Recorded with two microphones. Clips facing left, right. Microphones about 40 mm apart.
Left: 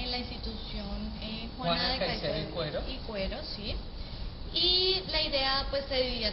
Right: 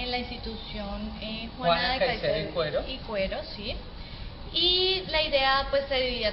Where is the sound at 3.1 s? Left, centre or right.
Right.